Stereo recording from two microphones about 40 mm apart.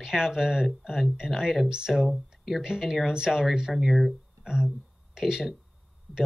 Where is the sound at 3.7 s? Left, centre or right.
Centre.